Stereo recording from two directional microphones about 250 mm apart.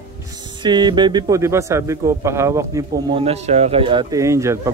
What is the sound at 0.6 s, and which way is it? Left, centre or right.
Speech, centre.